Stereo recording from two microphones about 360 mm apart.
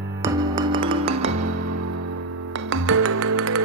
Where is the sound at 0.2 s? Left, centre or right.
Centre.